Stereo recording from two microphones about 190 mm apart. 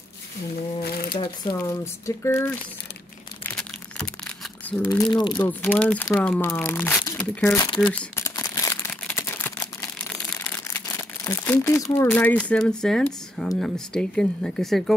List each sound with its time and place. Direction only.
0.8 s speech: 55° left (ahead or behind)
1.1 s speech: 20° left (ahead or behind)
3.4 s crumpling: 5° left (ahead or behind)
4.6 s speech: 10° left (ahead or behind)
7.6 s speech: 25° left (ahead or behind)
7.9 s speech: 10° left (ahead or behind)
8.4 s crumpling: 20° left (ahead or behind)
11.9 s speech: 10° left (ahead or behind)